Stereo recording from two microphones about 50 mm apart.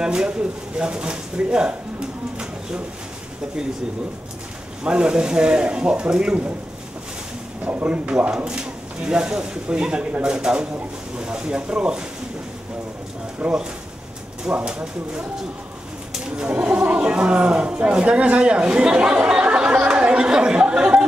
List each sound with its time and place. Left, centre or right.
0.0 s speech: centre
4.8 s speech: right
7.6 s speech: right
13.4 s speech: right
16.3 s a sound: centre
16.9 s speech: right